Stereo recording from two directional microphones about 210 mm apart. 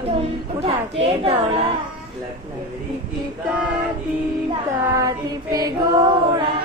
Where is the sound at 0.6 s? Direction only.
30° right (ahead or behind).